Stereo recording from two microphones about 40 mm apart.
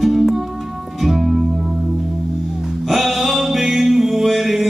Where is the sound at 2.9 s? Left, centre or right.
Centre.